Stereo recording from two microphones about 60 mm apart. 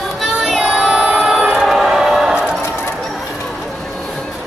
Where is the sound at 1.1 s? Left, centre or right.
Centre.